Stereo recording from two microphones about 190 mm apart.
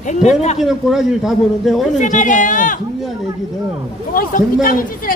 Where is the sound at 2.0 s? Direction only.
40° left (ahead or behind).